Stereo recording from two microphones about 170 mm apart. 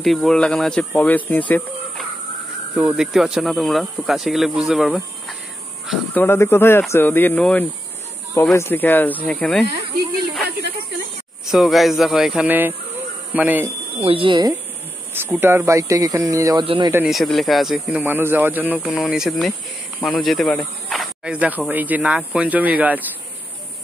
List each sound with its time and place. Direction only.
0.0 s speech: centre (ahead or behind)
2.7 s speech: 10° right (ahead or behind)
6.1 s speech: 15° left (ahead or behind)
10.4 s snake: 75° right (ahead or behind)
11.5 s speech: centre (ahead or behind)
13.9 s speech: 30° right (ahead or behind)
15.1 s speech: 10° right (ahead or behind)
16.6 s speech: 30° right (ahead or behind)
16.9 s speech: 5° right (ahead or behind)
18.0 s speech: 10° right (ahead or behind)
18.9 s speech: centre (ahead or behind)